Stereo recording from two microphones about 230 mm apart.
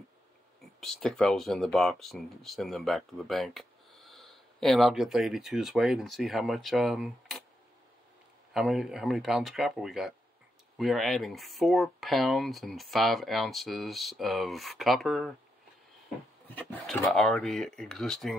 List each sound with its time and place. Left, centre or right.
0.7 s speech: centre
8.5 s speech: centre
16.4 s speech: centre